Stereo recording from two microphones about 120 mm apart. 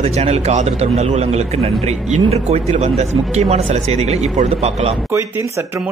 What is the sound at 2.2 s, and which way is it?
Speech, 60° right (ahead or behind).